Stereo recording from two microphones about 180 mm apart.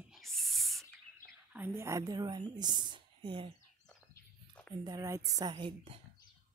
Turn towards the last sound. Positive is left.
turn(degrees=-30)  # may be behind; listen again after turning